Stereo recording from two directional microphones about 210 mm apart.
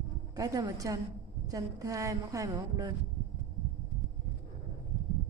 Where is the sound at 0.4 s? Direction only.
15° right (ahead or behind).